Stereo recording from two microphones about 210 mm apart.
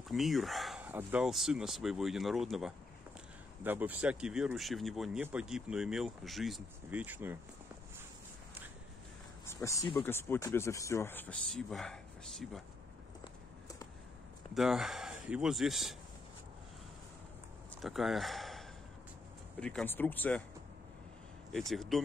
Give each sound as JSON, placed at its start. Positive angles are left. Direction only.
{"t": 0.1, "sound": "speech", "side_deg": 0}
{"t": 9.5, "sound": "speech", "side_deg": 15}
{"t": 13.2, "sound": "run", "side_deg": 15}
{"t": 14.5, "sound": "speech", "side_deg": 0}
{"t": 17.8, "sound": "a man's voice", "side_deg": 0}
{"t": 21.5, "sound": "speech", "side_deg": 0}